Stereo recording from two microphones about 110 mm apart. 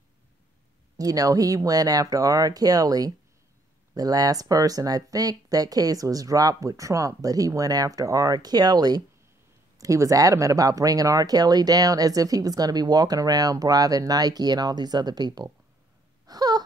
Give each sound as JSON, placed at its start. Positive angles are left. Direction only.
{"t": 0.9, "sound": "speech", "side_deg": -35}
{"t": 16.3, "sound": "wail", "side_deg": -35}